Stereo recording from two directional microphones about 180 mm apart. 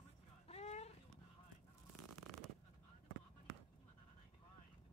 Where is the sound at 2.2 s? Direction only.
Centre (ahead or behind).